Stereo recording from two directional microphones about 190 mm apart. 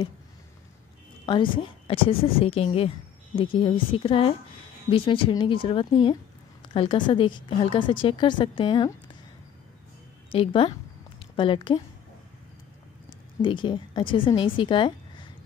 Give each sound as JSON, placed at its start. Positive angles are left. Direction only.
{"t": 1.2, "sound": "a woman's voice", "side_deg": 25}
{"t": 10.3, "sound": "a woman's voice", "side_deg": 25}
{"t": 13.4, "sound": "a woman's voice", "side_deg": 25}